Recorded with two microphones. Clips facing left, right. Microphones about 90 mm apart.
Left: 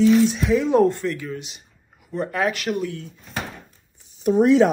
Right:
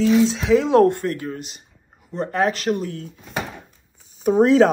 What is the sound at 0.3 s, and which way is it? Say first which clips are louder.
Speech: right 3 dB; 90° right.